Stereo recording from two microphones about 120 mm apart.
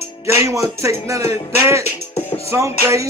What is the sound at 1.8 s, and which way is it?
Speech, 55° left (ahead or behind).